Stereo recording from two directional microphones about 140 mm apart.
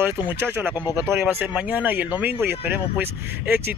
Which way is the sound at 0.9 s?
15° right (ahead or behind).